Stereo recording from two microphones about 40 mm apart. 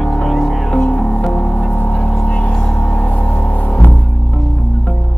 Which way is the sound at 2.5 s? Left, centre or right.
Centre.